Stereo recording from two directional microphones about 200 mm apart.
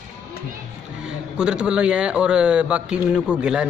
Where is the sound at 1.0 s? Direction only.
5° right (ahead or behind).